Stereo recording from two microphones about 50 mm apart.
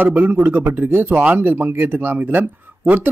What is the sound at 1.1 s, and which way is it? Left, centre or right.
Speech, right.